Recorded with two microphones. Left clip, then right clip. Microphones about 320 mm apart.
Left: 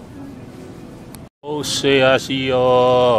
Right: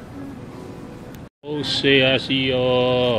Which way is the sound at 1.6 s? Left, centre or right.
Centre.